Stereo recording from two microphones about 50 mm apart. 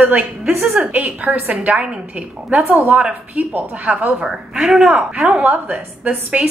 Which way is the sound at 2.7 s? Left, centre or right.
Right.